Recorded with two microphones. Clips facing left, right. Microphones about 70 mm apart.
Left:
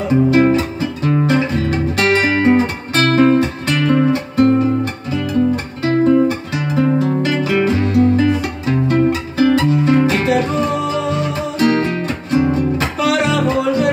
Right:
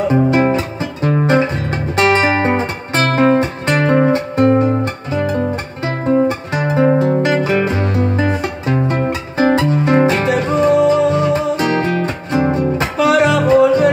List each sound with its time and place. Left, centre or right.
0.1 s music: right